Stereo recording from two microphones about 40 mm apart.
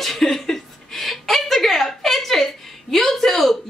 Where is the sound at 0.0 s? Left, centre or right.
Centre.